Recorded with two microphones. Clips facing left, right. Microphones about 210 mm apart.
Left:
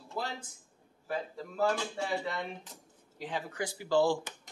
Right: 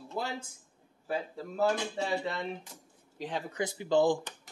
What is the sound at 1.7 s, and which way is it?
Speech, 20° right (ahead or behind).